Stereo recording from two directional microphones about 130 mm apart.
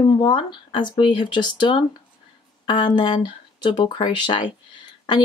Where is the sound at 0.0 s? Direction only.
40° left (ahead or behind).